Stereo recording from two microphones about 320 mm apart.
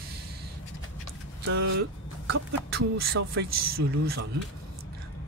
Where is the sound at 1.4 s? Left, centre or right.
Right.